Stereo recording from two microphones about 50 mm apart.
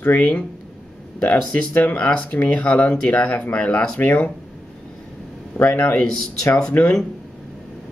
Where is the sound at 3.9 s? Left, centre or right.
Left.